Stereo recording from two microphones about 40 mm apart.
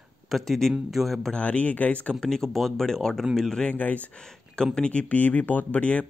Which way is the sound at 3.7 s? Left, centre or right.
Left.